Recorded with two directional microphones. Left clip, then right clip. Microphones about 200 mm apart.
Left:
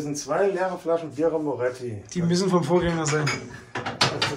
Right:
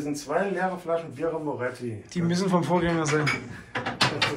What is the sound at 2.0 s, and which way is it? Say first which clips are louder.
Speech: left 3 dB; 20° left (ahead or behind).